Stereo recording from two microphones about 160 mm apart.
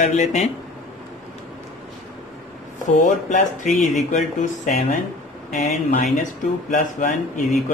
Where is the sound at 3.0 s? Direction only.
50° left (ahead or behind).